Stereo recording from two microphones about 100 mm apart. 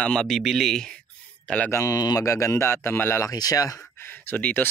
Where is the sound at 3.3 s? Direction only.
40° left (ahead or behind).